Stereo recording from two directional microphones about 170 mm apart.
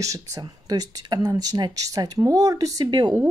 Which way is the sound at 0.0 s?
20° right (ahead or behind).